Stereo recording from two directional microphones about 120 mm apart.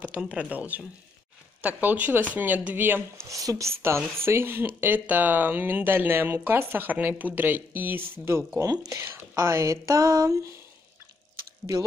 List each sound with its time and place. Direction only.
0.0 s speech: 10° right (ahead or behind)
8.5 s speech: 30° right (ahead or behind)